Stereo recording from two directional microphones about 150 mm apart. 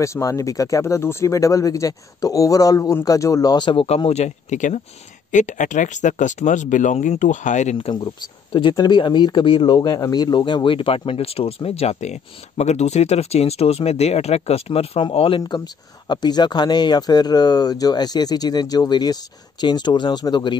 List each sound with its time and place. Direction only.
0.0 s speech: 20° left (ahead or behind)
3.8 s speech: 45° left (ahead or behind)
7.7 s speech: 35° left (ahead or behind)